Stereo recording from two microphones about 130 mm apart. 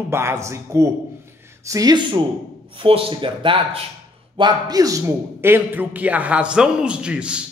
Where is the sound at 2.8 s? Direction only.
45° right (ahead or behind).